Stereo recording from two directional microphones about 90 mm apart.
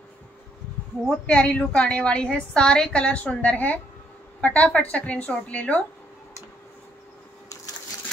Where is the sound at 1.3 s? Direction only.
15° left (ahead or behind).